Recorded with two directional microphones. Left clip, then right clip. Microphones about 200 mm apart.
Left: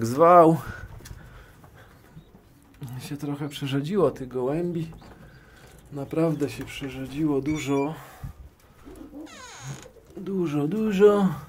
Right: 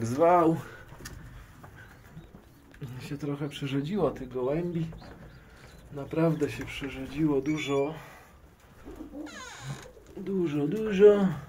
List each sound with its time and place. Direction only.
0.0 s speech: 45° left (ahead or behind)
2.9 s speech: 30° left (ahead or behind)
5.9 s speech: 25° left (ahead or behind)
10.2 s speech: 35° left (ahead or behind)